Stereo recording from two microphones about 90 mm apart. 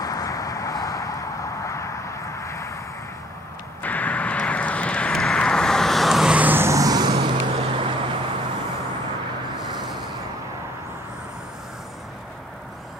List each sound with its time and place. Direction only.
0.0 s vehicle: 40° left (ahead or behind)
2.4 s vehicle: 30° left (ahead or behind)
3.8 s vehicle: 15° left (ahead or behind); by 6.3 s centre (ahead or behind)
6.3 s vehicle: 20° right (ahead or behind)
6.7 s vehicle: 40° right (ahead or behind)
7.2 s vehicle: 90° right; by 8.2 s 75° right (ahead or behind)
9.8 s vehicle: centre (ahead or behind)